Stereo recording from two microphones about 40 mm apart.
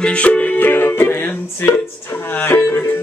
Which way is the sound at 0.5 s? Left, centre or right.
Left.